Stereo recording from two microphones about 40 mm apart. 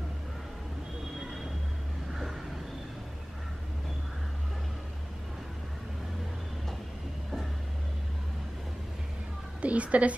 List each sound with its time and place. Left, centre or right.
9.6 s a woman's voice: right